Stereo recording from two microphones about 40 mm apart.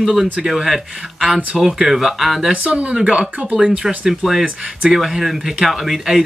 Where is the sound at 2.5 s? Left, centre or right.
Right.